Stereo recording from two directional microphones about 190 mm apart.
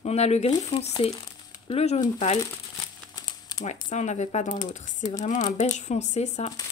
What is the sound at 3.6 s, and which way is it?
Speech, 40° left (ahead or behind).